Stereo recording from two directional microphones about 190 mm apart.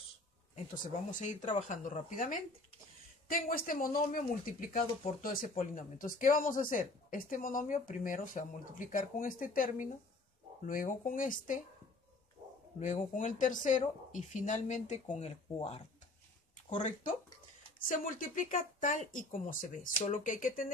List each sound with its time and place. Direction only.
1.1 s speech: 40° left (ahead or behind)
12.7 s speech: 40° left (ahead or behind)